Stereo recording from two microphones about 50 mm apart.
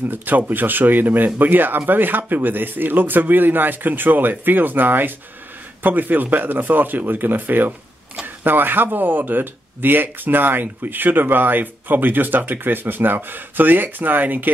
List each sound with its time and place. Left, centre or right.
0.1 s speech: right